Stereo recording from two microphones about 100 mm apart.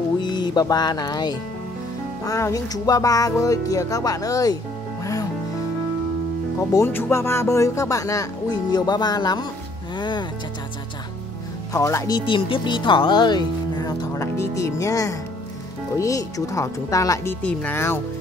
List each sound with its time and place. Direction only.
0.2 s music: 45° left (ahead or behind)
2.2 s speech: 35° left (ahead or behind)
5.0 s music: 35° left (ahead or behind)
6.9 s speech: 25° left (ahead or behind); by 9.5 s 45° left (ahead or behind)
9.9 s music: 50° left (ahead or behind)
11.7 s speech: 30° left (ahead or behind)
12.1 s speech: 55° left (ahead or behind)
14.1 s speech: 30° left (ahead or behind)
17.3 s speech: 15° left (ahead or behind)